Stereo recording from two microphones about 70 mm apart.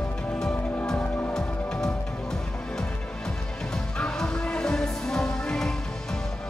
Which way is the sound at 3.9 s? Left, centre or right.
Centre.